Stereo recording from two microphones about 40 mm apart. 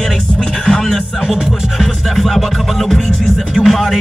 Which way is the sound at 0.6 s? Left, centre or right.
Centre.